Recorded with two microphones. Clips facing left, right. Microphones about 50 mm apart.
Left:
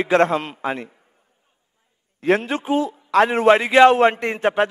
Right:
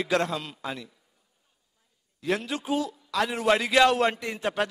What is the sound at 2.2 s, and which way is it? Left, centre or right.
A man's voice, left.